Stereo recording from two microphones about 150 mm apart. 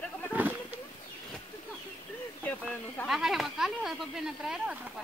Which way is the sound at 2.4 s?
10° left (ahead or behind).